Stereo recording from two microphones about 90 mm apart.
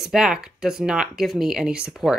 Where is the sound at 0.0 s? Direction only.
5° right (ahead or behind).